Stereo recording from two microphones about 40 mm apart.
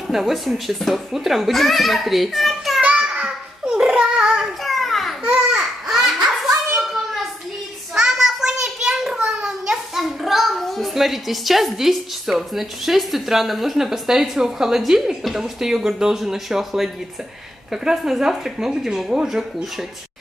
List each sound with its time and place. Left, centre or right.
0.1 s a child's voice: centre
3.0 s a sound: right
3.8 s child singing: centre
4.6 s a sound: centre
5.2 s babbling: right
5.9 s children playing: centre
7.9 s child singing: centre
9.4 s a child's voice: centre